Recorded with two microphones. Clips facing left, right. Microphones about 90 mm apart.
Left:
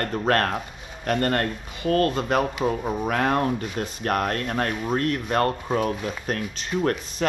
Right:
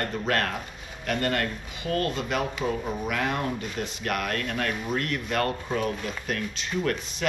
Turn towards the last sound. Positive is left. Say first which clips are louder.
# left 4 dB
turn(degrees=40)  # may be behind; listen again after turning